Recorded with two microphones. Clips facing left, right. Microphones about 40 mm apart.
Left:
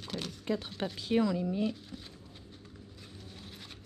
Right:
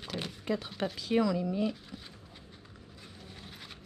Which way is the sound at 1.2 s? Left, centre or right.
Right.